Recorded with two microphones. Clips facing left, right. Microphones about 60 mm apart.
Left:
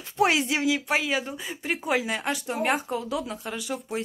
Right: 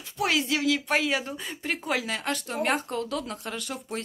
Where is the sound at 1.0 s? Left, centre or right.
Centre.